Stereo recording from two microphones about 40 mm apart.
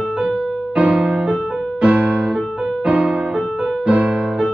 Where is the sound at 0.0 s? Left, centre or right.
Right.